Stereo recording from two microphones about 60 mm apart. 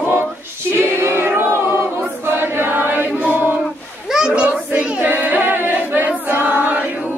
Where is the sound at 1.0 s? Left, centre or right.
Right.